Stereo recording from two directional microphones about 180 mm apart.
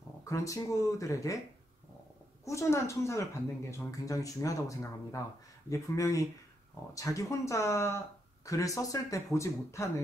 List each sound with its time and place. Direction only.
0.2 s speech: 15° left (ahead or behind)
2.4 s speech: 15° left (ahead or behind)